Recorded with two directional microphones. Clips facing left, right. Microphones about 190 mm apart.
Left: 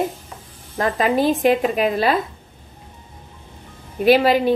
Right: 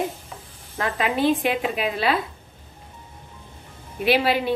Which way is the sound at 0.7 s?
40° left (ahead or behind).